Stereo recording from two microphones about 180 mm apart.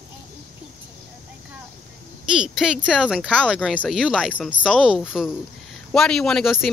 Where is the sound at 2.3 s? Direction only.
5° right (ahead or behind).